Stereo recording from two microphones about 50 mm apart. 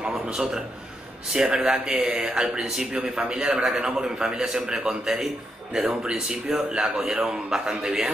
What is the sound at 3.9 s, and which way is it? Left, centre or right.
Speech, centre.